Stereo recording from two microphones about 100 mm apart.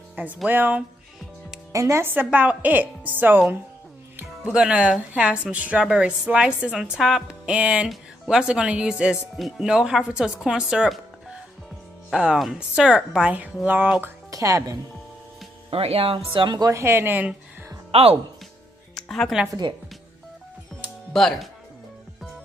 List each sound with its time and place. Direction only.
0.5 s a woman's voice: 20° right (ahead or behind)
1.7 s a woman's voice: 30° right (ahead or behind)
4.5 s a woman's voice: 10° right (ahead or behind)
14.3 s speech: 35° right (ahead or behind)
15.7 s speech: 80° right; by 16.7 s 45° right (ahead or behind)
16.7 s a woman's voice: 25° right (ahead or behind)
17.9 s speech: 80° right
18.9 s music: 5° left (ahead or behind)
21.1 s speech: 5° left (ahead or behind)